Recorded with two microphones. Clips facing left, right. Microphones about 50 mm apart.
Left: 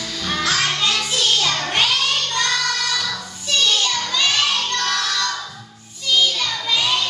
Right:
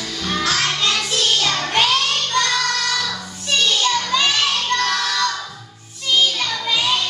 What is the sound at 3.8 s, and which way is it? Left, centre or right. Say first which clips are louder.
Music: right 3 dB; centre.